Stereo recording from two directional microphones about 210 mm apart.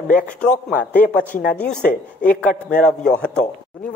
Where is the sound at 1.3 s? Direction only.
45° left (ahead or behind).